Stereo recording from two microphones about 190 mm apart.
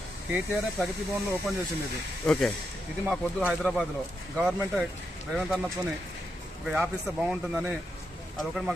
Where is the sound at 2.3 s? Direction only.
5° left (ahead or behind).